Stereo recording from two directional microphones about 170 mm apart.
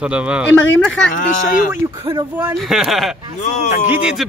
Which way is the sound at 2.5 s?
Centre (ahead or behind).